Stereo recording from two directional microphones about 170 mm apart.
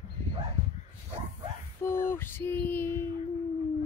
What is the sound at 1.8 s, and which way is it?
Female singing, 15° left (ahead or behind).